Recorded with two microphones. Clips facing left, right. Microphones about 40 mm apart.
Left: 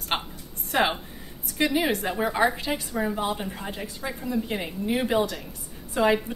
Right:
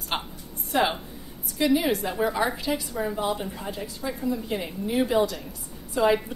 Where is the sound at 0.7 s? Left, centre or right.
Left.